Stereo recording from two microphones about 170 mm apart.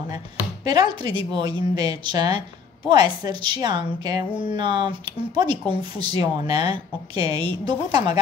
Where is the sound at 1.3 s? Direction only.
25° right (ahead or behind).